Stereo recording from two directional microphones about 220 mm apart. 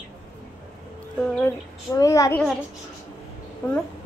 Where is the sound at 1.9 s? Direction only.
15° left (ahead or behind).